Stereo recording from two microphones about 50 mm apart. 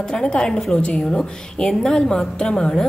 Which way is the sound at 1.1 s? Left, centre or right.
Centre.